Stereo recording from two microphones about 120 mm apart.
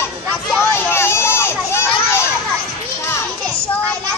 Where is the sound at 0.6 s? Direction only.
20° left (ahead or behind).